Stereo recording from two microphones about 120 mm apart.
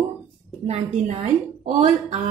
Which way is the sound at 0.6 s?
65° right (ahead or behind).